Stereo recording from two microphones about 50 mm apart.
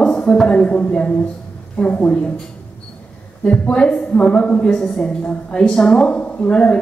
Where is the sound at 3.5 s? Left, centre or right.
Centre.